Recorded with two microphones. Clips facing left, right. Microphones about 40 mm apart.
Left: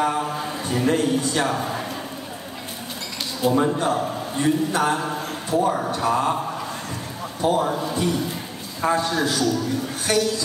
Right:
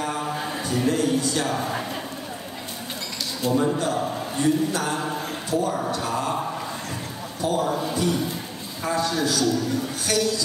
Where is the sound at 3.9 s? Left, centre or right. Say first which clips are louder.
Left 1 dB; centre.